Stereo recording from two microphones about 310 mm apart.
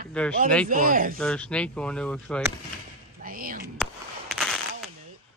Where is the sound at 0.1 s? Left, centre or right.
Centre.